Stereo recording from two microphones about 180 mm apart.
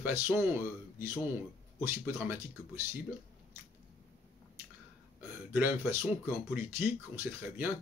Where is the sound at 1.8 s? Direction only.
10° right (ahead or behind).